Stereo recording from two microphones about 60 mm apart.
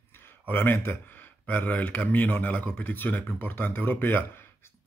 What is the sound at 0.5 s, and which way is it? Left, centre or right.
Speech, left.